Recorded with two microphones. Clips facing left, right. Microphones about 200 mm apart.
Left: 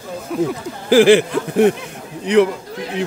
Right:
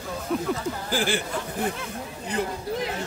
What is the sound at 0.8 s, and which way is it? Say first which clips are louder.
Speech: left 18 dB; 85° left.